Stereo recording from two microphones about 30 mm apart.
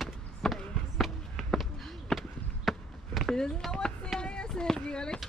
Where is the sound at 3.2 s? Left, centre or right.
Left.